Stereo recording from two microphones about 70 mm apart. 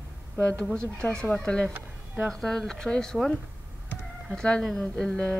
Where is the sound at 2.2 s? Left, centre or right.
Centre.